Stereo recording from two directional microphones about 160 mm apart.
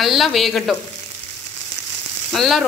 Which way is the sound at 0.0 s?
Centre (ahead or behind).